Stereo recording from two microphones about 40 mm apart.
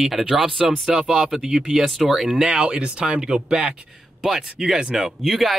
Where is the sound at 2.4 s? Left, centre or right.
Right.